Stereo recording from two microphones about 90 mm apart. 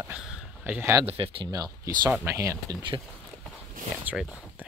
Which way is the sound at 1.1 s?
75° right (ahead or behind).